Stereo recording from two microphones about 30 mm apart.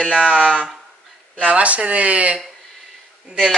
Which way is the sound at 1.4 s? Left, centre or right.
Right.